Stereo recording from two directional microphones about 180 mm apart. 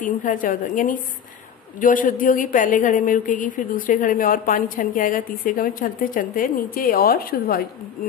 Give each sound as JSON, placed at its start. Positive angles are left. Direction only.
{"t": 0.0, "sound": "a woman's voice", "side_deg": 45}